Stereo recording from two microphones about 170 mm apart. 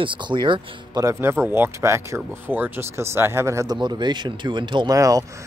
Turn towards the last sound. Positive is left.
turn(degrees=-20)  # may be behind; listen again after turning